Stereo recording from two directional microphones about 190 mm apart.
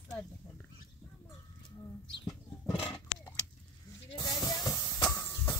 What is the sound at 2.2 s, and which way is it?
Roaring cats, 5° left (ahead or behind).